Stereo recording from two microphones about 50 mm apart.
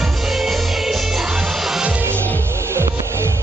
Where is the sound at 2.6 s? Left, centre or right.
Right.